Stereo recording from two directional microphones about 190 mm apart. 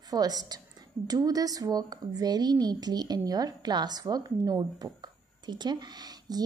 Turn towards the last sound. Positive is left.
turn(degrees=-20)  # may be behind; listen again after turning